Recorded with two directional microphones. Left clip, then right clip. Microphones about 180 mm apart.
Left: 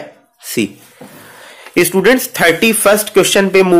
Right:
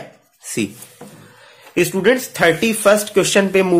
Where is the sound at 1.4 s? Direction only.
15° left (ahead or behind).